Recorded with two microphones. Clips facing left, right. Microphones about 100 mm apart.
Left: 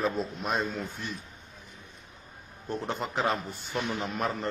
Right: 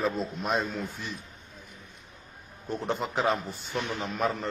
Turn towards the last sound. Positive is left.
turn(degrees=0)  # may be behind; listen again after turning